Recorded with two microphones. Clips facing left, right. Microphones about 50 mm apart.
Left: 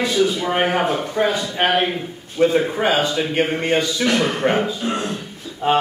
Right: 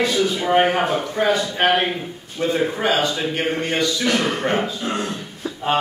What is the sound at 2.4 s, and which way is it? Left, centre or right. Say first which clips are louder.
A man's voice: left 4 dB; centre.